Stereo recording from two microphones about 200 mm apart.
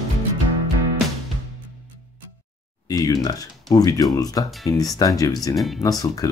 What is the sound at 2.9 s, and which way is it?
Speech, 20° left (ahead or behind).